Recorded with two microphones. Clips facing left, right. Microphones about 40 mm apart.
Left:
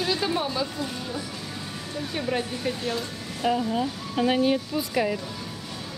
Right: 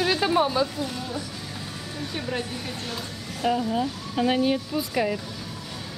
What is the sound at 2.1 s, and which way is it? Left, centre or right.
A woman's voice, centre.